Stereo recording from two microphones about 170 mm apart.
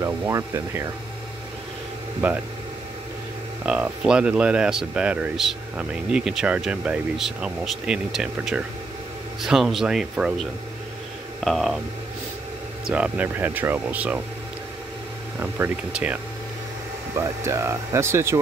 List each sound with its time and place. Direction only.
0.0 s speech: 15° right (ahead or behind)
2.2 s speech: 10° right (ahead or behind)
3.6 s speech: 5° right (ahead or behind)
12.9 s speech: 10° right (ahead or behind)
15.5 s speech: 10° right (ahead or behind)
17.2 s speech: 15° right (ahead or behind)